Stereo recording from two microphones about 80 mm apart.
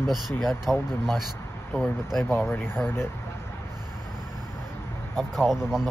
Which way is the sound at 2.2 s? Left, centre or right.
Left.